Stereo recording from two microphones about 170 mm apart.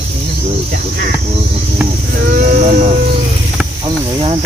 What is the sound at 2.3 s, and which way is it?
Sheep, 60° right (ahead or behind).